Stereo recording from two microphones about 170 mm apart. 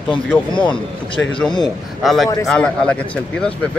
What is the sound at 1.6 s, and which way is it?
Speech, centre (ahead or behind).